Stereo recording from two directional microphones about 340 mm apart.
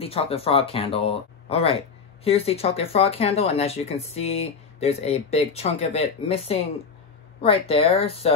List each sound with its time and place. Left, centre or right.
0.0 s speech: centre